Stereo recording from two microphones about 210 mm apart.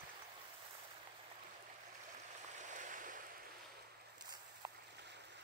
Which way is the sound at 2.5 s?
35° right (ahead or behind).